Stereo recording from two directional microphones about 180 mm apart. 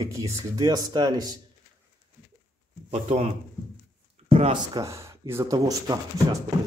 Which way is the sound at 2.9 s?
35° right (ahead or behind).